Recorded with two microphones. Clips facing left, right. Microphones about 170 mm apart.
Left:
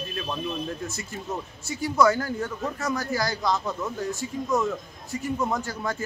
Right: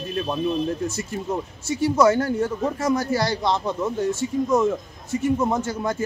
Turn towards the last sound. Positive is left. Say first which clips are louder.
# right 5 dB
turn(degrees=-25)  # may be behind; listen again after turning